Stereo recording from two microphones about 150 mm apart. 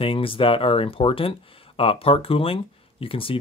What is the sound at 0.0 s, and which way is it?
Speech, 35° left (ahead or behind).